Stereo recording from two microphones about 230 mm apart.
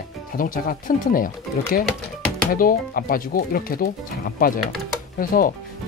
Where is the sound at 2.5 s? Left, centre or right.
Left.